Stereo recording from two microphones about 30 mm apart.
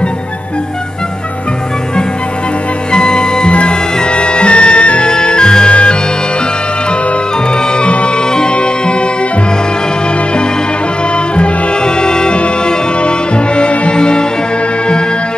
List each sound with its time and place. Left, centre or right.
2.9 s music: left
5.7 s music: left
7.5 s music: left
11.3 s music: left
13.6 s brass instrument: left